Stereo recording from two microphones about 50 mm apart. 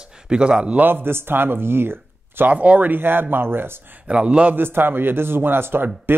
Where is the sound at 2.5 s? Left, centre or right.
Right.